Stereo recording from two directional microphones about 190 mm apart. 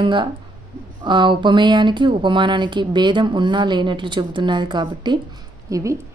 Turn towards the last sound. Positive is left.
turn(degrees=-15)  # may be behind; listen again after turning